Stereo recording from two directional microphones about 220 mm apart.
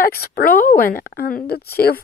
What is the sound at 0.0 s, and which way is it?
Speech, 45° left (ahead or behind).